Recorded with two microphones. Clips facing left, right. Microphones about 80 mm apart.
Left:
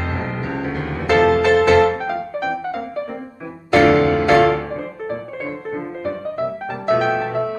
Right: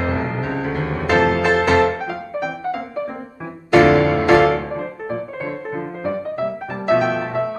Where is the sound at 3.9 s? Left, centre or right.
Right.